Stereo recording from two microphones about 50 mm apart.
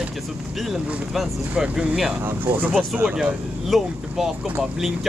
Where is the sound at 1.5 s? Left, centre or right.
Centre.